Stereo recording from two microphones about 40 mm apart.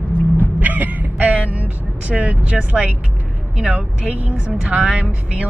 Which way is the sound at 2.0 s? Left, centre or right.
Right.